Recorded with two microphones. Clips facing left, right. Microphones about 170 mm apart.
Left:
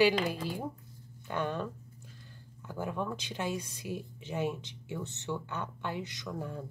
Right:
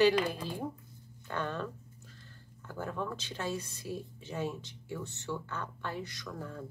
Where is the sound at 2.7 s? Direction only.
15° left (ahead or behind).